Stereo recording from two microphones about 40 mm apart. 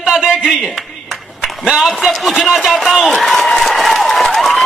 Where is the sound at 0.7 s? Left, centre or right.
Centre.